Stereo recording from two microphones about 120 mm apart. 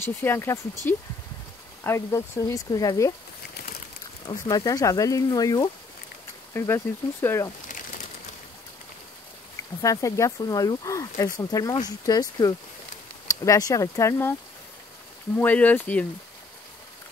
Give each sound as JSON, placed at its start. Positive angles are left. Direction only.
{"t": 0.0, "sound": "speech", "side_deg": 20}
{"t": 1.8, "sound": "speech", "side_deg": 20}
{"t": 4.3, "sound": "speech", "side_deg": 30}
{"t": 6.5, "sound": "speech", "side_deg": 20}
{"t": 9.8, "sound": "speech", "side_deg": 30}
{"t": 15.3, "sound": "speech", "side_deg": 15}